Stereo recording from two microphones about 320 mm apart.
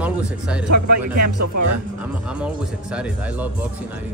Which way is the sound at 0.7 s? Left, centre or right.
Right.